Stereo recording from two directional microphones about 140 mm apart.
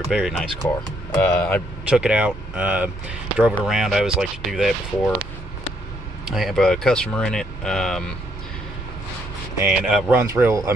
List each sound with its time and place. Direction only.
0.1 s speech: centre (ahead or behind)
1.9 s speech: 10° right (ahead or behind)
6.2 s speech: centre (ahead or behind)
9.6 s speech: 5° right (ahead or behind)
10.1 s speech: 15° right (ahead or behind)